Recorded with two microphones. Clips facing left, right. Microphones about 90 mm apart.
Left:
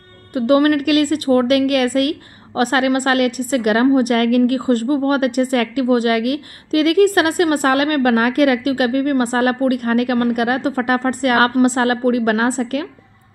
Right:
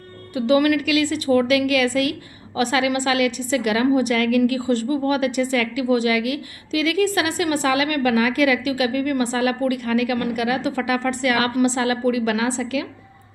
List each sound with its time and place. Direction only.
0.3 s a woman's voice: 45° left (ahead or behind)